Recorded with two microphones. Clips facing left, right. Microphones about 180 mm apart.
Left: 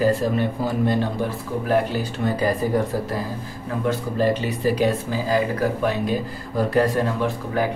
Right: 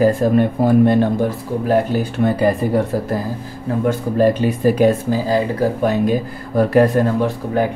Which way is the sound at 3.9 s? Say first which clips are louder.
Right 5 dB; 50° right (ahead or behind).